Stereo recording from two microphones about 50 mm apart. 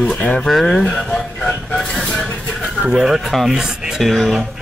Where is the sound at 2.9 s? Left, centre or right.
Centre.